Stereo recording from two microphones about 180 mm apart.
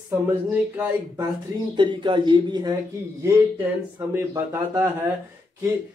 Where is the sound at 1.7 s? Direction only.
25° right (ahead or behind).